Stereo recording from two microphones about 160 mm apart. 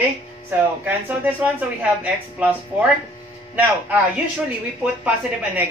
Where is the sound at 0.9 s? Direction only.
10° right (ahead or behind).